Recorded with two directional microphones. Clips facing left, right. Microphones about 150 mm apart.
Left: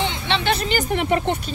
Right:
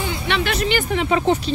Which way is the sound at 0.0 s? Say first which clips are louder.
Even; 25° left (ahead or behind).